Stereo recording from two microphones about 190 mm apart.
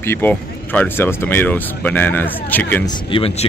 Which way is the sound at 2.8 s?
30° left (ahead or behind).